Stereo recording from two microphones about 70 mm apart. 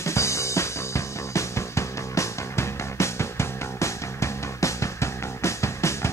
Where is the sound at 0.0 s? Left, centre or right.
Left.